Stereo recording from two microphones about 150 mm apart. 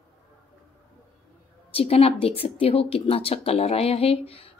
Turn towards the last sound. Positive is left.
turn(degrees=40)  # may be behind; listen again after turning